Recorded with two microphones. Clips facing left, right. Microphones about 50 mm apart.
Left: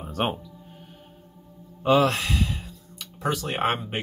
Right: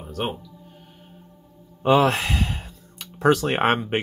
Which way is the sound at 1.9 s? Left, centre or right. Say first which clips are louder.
Right 2 dB; right.